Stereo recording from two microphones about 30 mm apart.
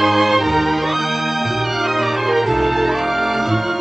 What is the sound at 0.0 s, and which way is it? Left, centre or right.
Music, centre.